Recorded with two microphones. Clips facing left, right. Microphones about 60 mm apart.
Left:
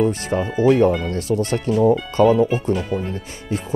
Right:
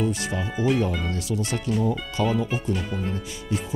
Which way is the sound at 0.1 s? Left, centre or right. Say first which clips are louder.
Left 6 dB; left.